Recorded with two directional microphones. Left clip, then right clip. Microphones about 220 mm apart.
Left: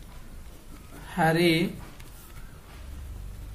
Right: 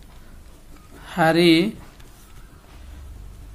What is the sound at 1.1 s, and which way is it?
Speech, 45° right (ahead or behind).